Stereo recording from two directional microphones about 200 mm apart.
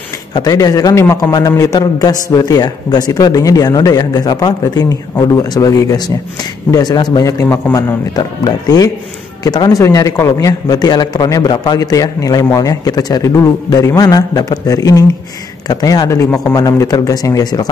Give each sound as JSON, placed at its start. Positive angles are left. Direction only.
{"t": 0.3, "sound": "a man's voice", "side_deg": 20}